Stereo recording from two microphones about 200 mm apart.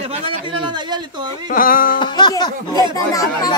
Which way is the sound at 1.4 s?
45° left (ahead or behind).